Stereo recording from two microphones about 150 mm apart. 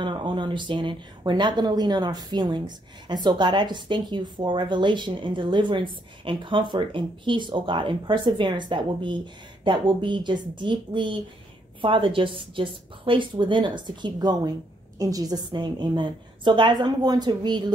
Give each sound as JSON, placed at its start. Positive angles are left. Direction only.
{"t": 0.0, "sound": "a woman's voice", "side_deg": -30}